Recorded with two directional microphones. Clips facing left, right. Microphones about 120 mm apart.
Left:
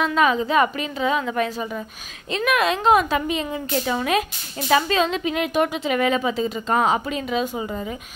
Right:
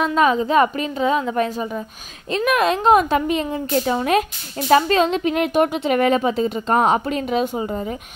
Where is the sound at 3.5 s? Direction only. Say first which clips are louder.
Right 4 dB; 35° right (ahead or behind).